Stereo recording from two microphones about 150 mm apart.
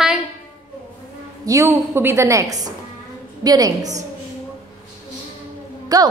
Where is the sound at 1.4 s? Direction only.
20° right (ahead or behind).